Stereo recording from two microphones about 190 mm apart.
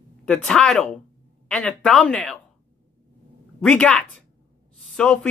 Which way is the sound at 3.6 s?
5° left (ahead or behind).